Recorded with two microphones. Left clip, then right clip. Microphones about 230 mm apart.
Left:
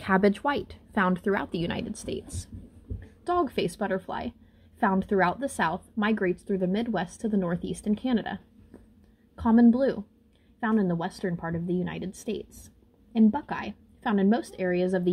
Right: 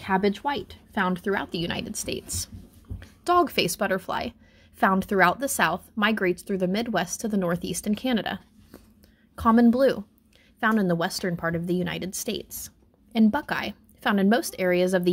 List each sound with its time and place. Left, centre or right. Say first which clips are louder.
0.0 s a woman's voice: left 1 dB; centre